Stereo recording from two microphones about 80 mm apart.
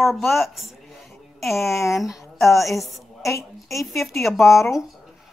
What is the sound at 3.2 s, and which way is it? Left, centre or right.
Speech, left.